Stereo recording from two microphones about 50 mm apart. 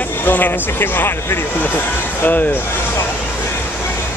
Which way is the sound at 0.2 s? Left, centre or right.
Left.